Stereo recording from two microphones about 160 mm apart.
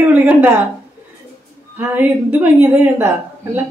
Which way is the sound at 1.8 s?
10° right (ahead or behind).